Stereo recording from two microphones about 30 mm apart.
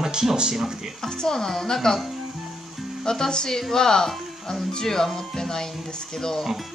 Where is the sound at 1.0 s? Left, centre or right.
Centre.